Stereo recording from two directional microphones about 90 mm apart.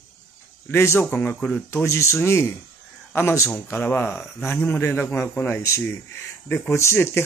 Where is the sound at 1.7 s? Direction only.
30° left (ahead or behind).